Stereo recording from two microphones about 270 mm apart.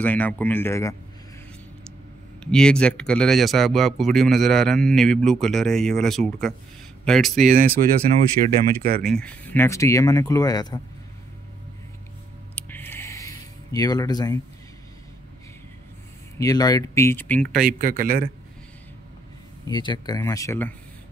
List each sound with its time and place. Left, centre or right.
0.0 s speech: centre
2.4 s speech: centre
7.4 s speech: right
9.1 s speech: centre
12.5 s a sound: centre
16.3 s speech: centre
17.5 s speech: right
19.6 s speech: centre